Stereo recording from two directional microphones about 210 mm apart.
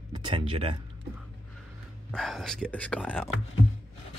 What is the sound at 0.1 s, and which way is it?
Speech, 25° right (ahead or behind).